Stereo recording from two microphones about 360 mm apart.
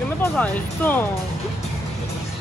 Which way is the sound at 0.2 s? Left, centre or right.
Centre.